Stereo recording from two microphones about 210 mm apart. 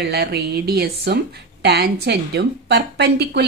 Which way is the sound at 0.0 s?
50° right (ahead or behind).